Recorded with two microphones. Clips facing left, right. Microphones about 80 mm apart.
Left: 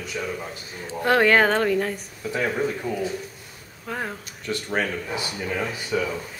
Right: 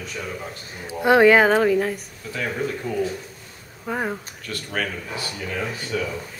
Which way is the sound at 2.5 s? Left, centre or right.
Centre.